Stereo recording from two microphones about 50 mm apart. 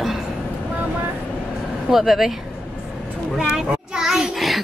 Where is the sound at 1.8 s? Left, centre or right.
Centre.